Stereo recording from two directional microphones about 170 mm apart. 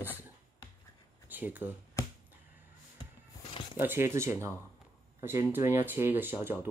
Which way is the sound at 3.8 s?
15° right (ahead or behind).